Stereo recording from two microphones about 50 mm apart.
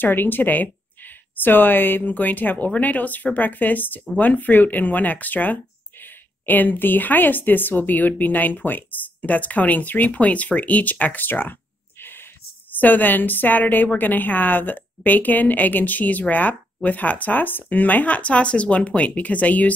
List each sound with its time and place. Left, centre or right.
0.0 s speech: left
12.7 s speech: left